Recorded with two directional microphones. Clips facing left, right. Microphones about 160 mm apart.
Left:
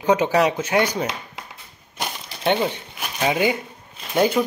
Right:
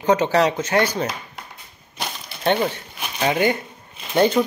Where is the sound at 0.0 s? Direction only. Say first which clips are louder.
Even; 10° left (ahead or behind).